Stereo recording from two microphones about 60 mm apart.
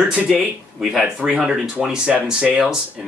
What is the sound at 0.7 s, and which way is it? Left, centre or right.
Speech, centre.